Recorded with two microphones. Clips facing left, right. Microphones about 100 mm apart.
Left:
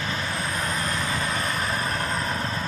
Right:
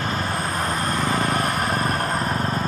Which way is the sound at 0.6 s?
40° right (ahead or behind).